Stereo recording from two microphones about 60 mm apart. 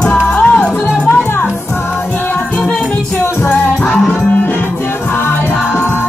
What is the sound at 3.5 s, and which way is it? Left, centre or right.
Music, left.